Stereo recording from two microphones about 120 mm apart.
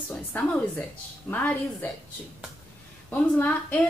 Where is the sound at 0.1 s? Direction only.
10° left (ahead or behind).